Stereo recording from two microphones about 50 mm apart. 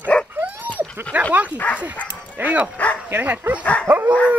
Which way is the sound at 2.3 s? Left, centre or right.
Right.